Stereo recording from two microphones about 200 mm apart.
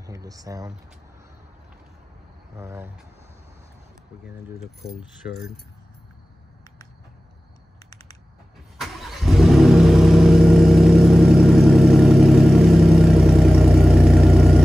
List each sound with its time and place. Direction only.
0.0 s speech: 15° right (ahead or behind)
2.5 s speech: 15° right (ahead or behind)
4.9 s speech: centre (ahead or behind)
8.7 s vehicle: centre (ahead or behind)